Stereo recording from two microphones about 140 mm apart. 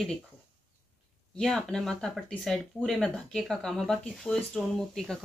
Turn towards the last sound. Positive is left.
turn(degrees=0)  # may be behind; listen again after turning